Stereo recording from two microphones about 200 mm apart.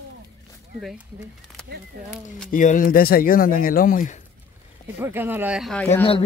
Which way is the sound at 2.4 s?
40° left (ahead or behind).